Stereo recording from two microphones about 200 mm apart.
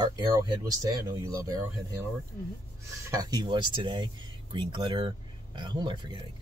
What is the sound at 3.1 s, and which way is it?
Speech, 20° right (ahead or behind).